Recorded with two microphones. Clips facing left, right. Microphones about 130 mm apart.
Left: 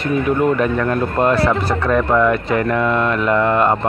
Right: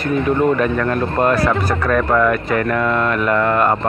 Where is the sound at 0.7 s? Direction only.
20° left (ahead or behind).